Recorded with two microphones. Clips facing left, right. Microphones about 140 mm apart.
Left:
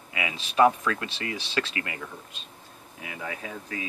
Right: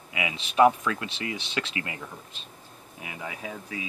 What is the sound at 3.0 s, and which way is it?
Speech, 10° right (ahead or behind).